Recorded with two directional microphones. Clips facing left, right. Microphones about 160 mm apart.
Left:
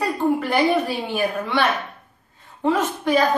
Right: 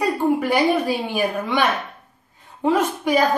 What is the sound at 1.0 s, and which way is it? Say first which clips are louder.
Speech: right 1 dB; 10° right (ahead or behind).